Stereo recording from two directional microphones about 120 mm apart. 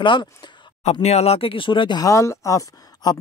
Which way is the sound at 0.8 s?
65° left (ahead or behind).